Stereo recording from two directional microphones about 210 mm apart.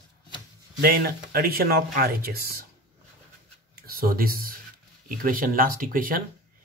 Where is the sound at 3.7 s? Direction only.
45° right (ahead or behind).